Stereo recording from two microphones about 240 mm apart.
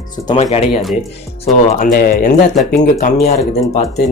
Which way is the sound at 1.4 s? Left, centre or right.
Left.